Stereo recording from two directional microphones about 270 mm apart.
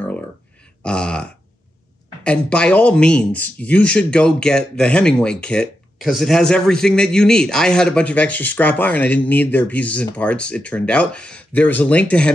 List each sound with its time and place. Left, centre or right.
0.8 s speech: centre